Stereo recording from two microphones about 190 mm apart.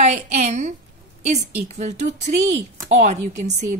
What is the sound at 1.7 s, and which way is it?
A woman's voice, 35° right (ahead or behind).